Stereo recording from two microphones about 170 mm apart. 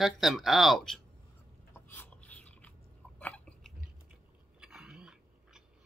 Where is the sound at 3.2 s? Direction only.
5° left (ahead or behind).